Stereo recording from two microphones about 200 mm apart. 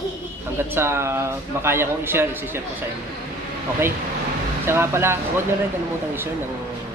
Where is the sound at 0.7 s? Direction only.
10° right (ahead or behind).